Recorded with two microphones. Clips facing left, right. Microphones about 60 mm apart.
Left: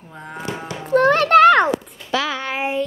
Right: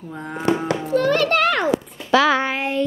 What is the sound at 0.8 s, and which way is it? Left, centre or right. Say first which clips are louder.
Music: left 4 dB; left.